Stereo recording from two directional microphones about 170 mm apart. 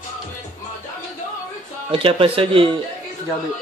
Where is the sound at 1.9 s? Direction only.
30° right (ahead or behind).